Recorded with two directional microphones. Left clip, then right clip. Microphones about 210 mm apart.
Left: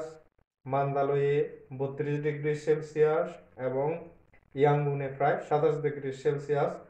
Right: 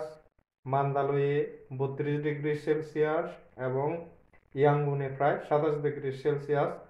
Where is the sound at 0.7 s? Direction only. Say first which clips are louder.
Even; 35° right (ahead or behind).